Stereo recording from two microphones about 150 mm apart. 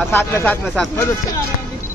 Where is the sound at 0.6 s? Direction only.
Centre (ahead or behind).